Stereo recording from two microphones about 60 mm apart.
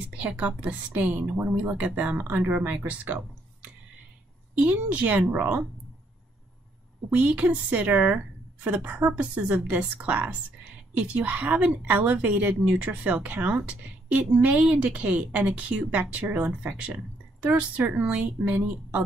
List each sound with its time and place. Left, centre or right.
0.2 s a woman's voice: right
4.6 s a woman's voice: right
7.1 s a woman's voice: right